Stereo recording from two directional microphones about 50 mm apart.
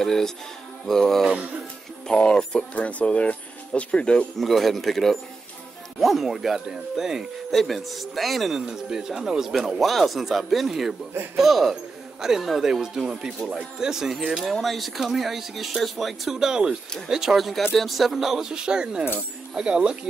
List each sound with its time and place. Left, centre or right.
0.0 s speech: centre
2.0 s speech: centre
4.4 s speech: centre
7.5 s speech: centre
8.5 s speech: centre